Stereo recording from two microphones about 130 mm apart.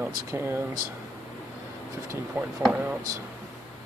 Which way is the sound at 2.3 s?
10° right (ahead or behind).